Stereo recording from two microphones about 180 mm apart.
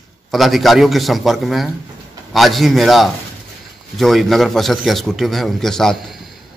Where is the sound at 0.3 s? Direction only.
Centre (ahead or behind).